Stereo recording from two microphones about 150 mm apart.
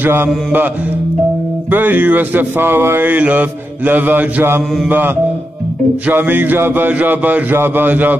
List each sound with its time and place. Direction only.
0.0 s speech: 15° right (ahead or behind)
1.7 s speech: 10° right (ahead or behind)